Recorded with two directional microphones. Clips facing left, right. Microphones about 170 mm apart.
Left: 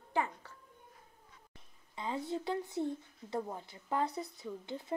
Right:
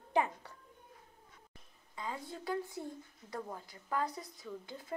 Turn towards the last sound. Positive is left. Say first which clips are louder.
# left 4 dB
turn(degrees=25)  # may be behind; listen again after turning